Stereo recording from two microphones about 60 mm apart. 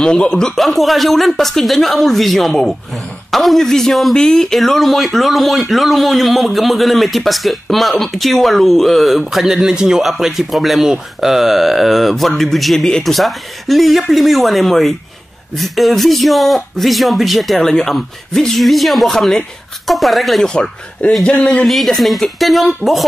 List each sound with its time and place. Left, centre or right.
0.0 s speech: centre
17.6 s speech: centre
20.4 s speech: centre
21.6 s speech: centre